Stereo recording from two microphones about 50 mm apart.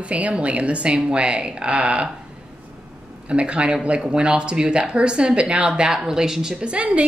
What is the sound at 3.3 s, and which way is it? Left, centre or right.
Speech, right.